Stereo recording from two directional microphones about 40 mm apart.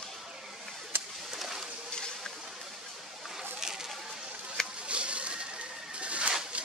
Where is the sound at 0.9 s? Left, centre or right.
Right.